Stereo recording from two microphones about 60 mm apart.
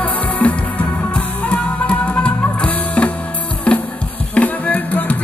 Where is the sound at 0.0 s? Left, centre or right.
Left.